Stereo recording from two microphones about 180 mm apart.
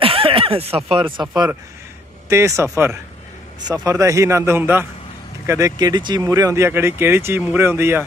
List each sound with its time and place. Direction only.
0.0 s snicker: 30° right (ahead or behind)
2.2 s speech: 15° right (ahead or behind)